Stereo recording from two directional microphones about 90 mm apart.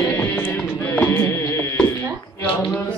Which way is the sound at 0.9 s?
25° left (ahead or behind).